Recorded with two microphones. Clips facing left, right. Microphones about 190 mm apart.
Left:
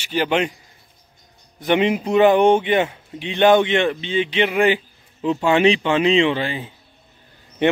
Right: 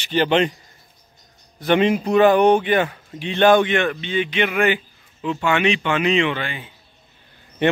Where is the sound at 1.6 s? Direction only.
20° left (ahead or behind); by 6.7 s 35° left (ahead or behind).